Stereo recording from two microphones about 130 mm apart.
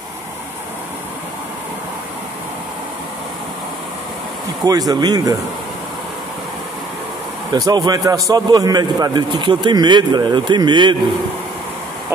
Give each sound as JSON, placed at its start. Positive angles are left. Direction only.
{"t": 4.6, "sound": "speech", "side_deg": -30}
{"t": 7.5, "sound": "a man's voice", "side_deg": -30}